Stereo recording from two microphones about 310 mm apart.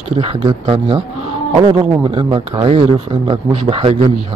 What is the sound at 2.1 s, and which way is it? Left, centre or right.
Speech, centre.